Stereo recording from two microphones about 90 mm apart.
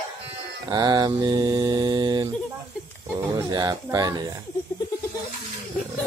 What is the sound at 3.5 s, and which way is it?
Mantra, 50° right (ahead or behind).